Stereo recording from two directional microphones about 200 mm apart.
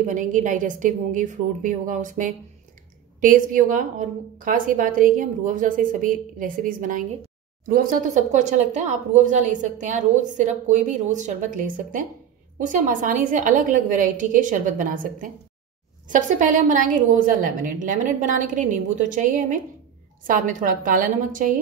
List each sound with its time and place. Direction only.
0.0 s speech: 40° right (ahead or behind)